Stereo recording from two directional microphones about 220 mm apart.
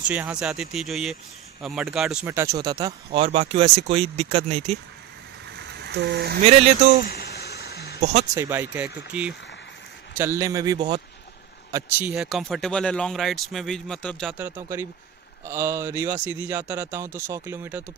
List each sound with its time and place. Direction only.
0.1 s speech: 5° right (ahead or behind); by 4.7 s 25° right (ahead or behind)
5.6 s a sound: 50° right (ahead or behind)
7.1 s a sound: 45° left (ahead or behind)
8.0 s speech: 30° right (ahead or behind)
8.4 s speech: 10° right (ahead or behind)
14.3 s speech: 10° right (ahead or behind)